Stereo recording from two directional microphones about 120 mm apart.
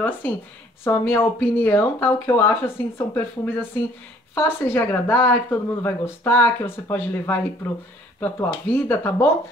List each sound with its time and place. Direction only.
0.8 s a woman's voice: 20° left (ahead or behind)